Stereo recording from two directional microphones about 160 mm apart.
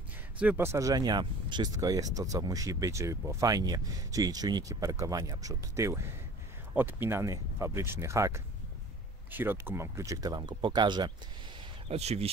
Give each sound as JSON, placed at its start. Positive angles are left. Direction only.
{"t": 0.4, "sound": "speech", "side_deg": -10}
{"t": 11.9, "sound": "speech", "side_deg": -40}